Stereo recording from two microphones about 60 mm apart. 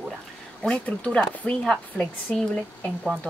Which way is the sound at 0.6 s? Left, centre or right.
Centre.